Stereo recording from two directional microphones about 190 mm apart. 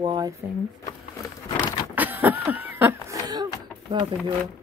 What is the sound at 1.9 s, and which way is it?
Cough, 10° right (ahead or behind).